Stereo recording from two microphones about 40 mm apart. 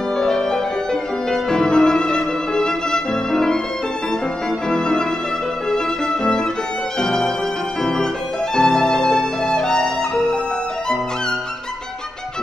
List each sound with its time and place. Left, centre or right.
0.2 s music: centre
1.3 s violin: centre
4.6 s violin: centre
7.0 s music: centre
8.5 s violin: centre